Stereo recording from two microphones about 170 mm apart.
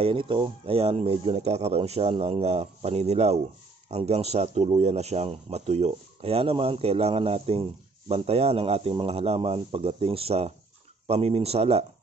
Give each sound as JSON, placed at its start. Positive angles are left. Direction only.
{"t": 0.0, "sound": "speech", "side_deg": -30}